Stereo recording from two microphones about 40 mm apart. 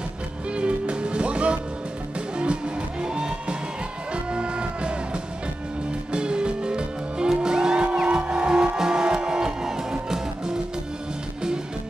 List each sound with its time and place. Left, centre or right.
0.6 s music: right